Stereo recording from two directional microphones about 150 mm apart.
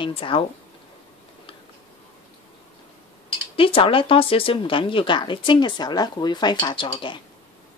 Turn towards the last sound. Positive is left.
turn(degrees=30)  # may be behind; listen again after turning